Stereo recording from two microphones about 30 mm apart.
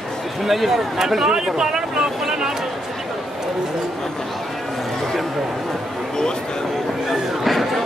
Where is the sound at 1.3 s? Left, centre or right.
Right.